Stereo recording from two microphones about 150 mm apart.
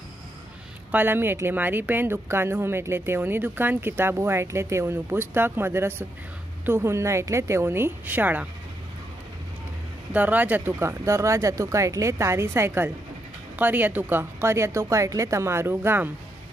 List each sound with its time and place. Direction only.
0.9 s speech: 15° right (ahead or behind)
10.1 s speech: 10° right (ahead or behind)